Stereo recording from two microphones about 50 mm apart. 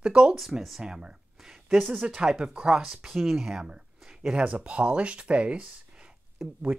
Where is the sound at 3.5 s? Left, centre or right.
Centre.